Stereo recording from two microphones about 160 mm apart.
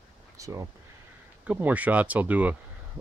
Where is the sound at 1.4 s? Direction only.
10° right (ahead or behind).